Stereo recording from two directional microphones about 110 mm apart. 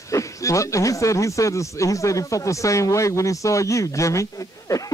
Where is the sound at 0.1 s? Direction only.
30° left (ahead or behind).